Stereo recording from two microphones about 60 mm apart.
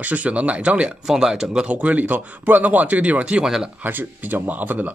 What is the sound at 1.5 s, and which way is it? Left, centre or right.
Speech, right.